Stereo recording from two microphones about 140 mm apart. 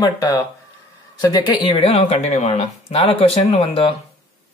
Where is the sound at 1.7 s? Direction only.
45° left (ahead or behind).